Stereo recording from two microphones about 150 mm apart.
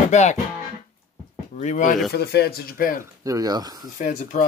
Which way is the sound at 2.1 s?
90° left.